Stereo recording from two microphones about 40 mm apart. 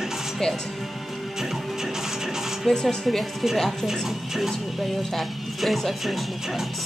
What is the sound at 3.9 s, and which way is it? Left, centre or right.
Speech, centre.